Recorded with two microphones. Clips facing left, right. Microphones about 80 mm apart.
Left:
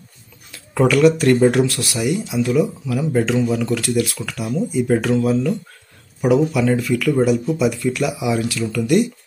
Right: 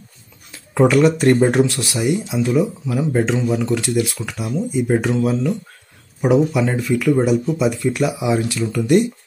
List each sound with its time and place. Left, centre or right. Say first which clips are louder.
0.7 s speech: even; right